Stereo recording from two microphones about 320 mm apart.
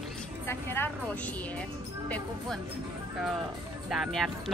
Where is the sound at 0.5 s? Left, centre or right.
Centre.